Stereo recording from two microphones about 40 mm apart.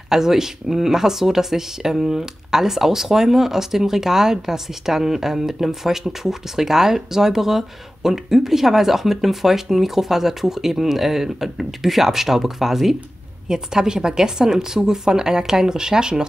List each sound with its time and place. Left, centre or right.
0.1 s speech: centre